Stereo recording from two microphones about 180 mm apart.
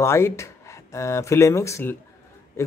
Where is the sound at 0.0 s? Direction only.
15° left (ahead or behind).